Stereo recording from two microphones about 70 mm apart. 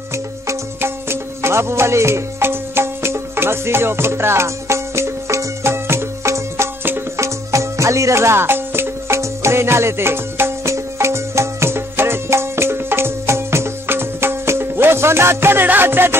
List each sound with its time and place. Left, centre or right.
0.1 s music: right